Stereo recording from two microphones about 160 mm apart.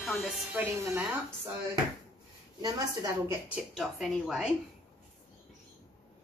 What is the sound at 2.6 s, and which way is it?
Speech, 20° right (ahead or behind).